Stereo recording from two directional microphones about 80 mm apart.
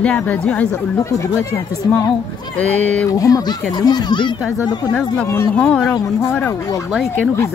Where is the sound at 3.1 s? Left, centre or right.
Left.